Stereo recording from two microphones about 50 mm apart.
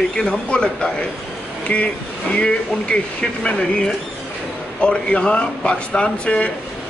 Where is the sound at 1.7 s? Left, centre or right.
Left.